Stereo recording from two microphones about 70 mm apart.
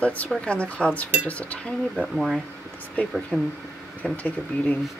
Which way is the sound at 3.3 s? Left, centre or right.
Right.